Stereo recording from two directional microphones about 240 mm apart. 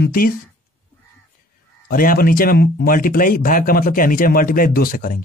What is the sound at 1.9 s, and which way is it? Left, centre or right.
A man's voice, left.